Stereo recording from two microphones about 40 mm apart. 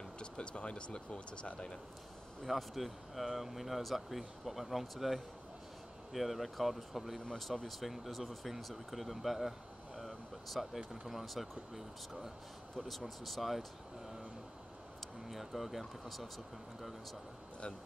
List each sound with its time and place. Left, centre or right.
0.2 s speech: left
2.4 s speech: centre
9.9 s a sound: centre
10.9 s speech: centre
15.2 s speech: centre